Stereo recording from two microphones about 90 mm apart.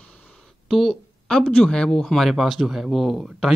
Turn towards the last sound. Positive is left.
turn(degrees=-5)  # may be behind; listen again after turning